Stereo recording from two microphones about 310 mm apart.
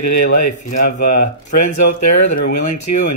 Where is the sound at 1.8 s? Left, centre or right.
Left.